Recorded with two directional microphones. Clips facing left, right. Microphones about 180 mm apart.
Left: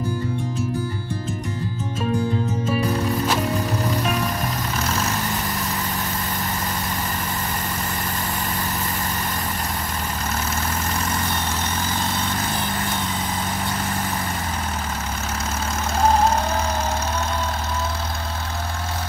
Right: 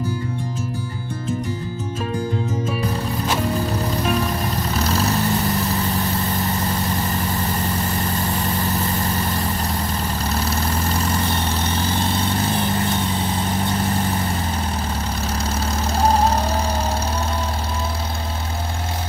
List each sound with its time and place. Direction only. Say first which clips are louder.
4.7 s vehicle: right 6 dB; 35° right (ahead or behind)
10.2 s vehicle: right 3 dB; 35° right (ahead or behind)
15.3 s vehicle: right 2 dB; 35° right (ahead or behind)